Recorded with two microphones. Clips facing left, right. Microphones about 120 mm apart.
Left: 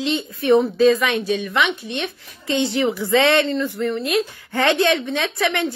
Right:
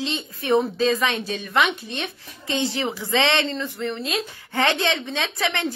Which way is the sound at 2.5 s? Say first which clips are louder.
Left 4 dB; 20° left (ahead or behind).